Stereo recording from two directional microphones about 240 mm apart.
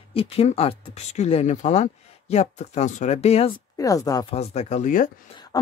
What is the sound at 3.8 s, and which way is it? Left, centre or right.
Speech, centre.